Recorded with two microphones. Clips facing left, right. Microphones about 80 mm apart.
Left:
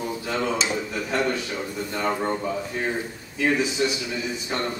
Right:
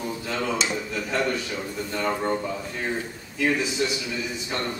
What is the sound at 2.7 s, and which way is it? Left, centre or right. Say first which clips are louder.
Speech: left 2 dB; left.